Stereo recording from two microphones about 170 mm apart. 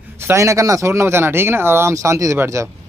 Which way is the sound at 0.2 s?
15° right (ahead or behind).